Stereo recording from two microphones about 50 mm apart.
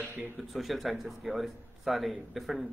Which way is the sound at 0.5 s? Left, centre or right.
Centre.